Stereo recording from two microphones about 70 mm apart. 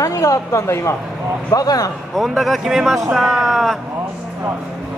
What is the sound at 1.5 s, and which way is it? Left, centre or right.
Speech, left.